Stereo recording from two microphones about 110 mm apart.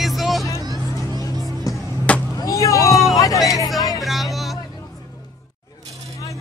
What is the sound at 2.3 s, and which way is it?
Vehicle, 30° left (ahead or behind).